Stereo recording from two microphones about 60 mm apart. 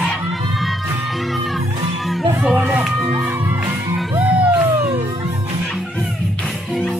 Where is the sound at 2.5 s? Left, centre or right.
Right.